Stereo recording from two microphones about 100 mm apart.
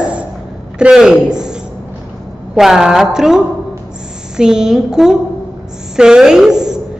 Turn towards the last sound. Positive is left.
turn(degrees=-5)  # may be behind; listen again after turning